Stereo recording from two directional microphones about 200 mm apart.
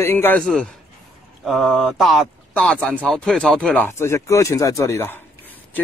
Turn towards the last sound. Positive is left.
turn(degrees=10)  # may be behind; listen again after turning